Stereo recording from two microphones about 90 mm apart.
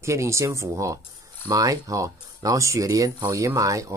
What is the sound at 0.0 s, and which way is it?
Speech, 35° right (ahead or behind).